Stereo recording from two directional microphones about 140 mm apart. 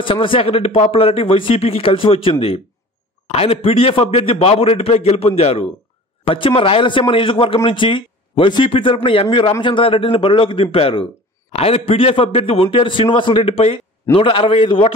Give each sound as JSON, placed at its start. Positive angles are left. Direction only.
{"t": 0.0, "sound": "a man's voice", "side_deg": 40}